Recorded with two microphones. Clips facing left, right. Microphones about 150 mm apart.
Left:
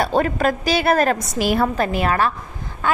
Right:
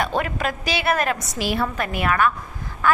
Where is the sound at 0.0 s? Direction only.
35° left (ahead or behind).